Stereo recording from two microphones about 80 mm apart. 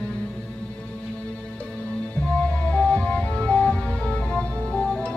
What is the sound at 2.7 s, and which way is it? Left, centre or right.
Music, centre.